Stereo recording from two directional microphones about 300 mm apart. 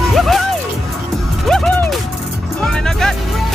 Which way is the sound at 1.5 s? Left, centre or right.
Centre.